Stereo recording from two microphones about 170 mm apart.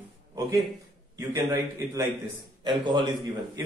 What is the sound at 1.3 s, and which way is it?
Speech, 15° right (ahead or behind).